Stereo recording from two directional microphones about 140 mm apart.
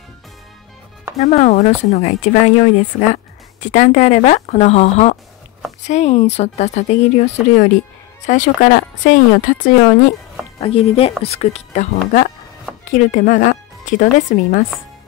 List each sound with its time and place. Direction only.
1.2 s speech: 55° left (ahead or behind)
3.7 s speech: 55° left (ahead or behind)
10.6 s speech: 45° left (ahead or behind)
12.9 s speech: 65° left (ahead or behind)